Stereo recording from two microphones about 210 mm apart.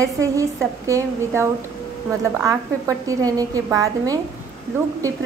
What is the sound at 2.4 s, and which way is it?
A woman's voice, 15° right (ahead or behind).